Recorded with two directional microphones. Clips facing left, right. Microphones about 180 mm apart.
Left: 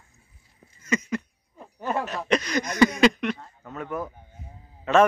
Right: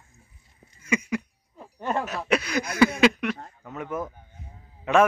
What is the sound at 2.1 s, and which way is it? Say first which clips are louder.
Speech: left 1 dB; 5° right (ahead or behind).